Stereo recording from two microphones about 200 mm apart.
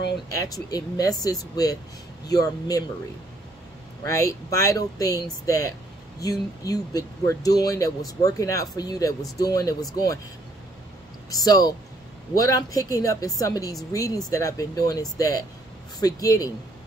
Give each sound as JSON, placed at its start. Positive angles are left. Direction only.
{"t": 0.4, "sound": "speech", "side_deg": 20}
{"t": 4.0, "sound": "speech", "side_deg": 15}
{"t": 11.2, "sound": "speech", "side_deg": 15}